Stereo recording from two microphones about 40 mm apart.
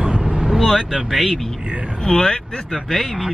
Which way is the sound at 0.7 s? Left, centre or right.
Centre.